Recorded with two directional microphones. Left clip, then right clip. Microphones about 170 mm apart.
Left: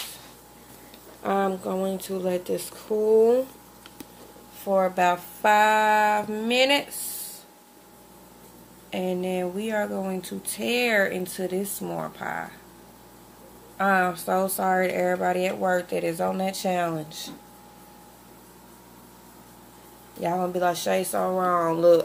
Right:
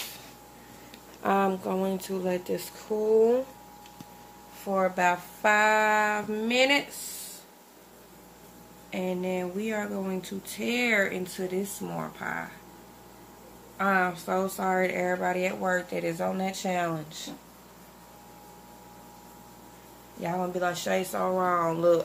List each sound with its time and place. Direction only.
1.2 s speech: 5° right (ahead or behind); by 3.3 s 10° left (ahead or behind)
4.6 s speech: 10° left (ahead or behind)
8.9 s speech: 20° left (ahead or behind)
13.7 s speech: 20° left (ahead or behind)
20.2 s speech: 20° left (ahead or behind)